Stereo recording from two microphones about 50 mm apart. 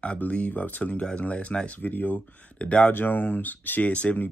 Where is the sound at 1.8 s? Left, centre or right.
Left.